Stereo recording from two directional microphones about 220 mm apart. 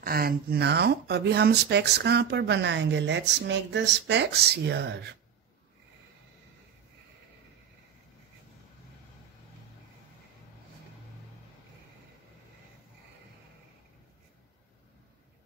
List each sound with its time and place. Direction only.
0.0 s speech: 40° right (ahead or behind)